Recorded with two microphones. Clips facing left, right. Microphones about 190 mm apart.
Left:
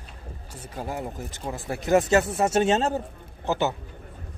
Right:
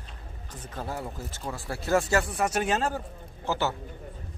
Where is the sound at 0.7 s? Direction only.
15° left (ahead or behind).